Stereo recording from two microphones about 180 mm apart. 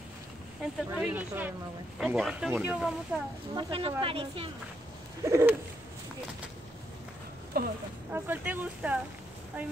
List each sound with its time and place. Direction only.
0.9 s speech: 5° right (ahead or behind)
3.5 s speech: 30° right (ahead or behind)
5.2 s speech: 15° right (ahead or behind)
7.5 s a sound: 55° right (ahead or behind)
8.1 s speech: 10° right (ahead or behind)